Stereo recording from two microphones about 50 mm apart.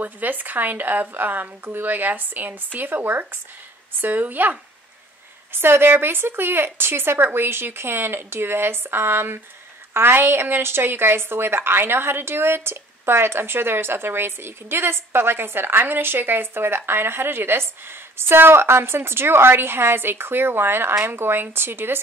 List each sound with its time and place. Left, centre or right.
0.0 s speech: right
5.5 s a woman's voice: right